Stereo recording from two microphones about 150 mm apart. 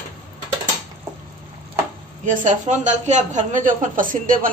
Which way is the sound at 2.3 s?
55° right (ahead or behind).